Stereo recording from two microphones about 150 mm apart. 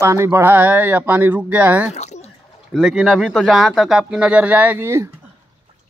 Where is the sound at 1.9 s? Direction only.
45° left (ahead or behind).